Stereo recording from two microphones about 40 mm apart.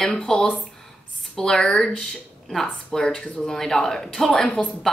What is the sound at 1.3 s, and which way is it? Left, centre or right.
Speech, centre.